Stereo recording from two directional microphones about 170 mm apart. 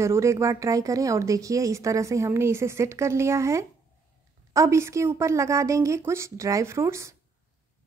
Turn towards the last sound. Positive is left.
turn(degrees=-15)  # may be behind; listen again after turning